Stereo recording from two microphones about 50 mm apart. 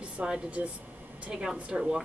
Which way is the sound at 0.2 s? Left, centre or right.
Centre.